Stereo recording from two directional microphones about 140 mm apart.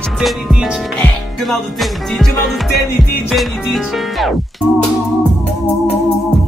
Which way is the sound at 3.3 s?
Centre (ahead or behind).